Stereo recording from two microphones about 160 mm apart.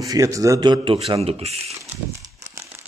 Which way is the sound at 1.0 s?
40° right (ahead or behind).